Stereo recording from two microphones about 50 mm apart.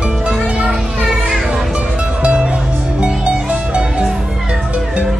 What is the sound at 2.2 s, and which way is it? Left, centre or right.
Music, right.